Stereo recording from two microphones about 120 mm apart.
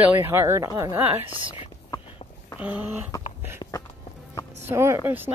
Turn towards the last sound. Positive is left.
turn(degrees=-20)  # may be behind; listen again after turning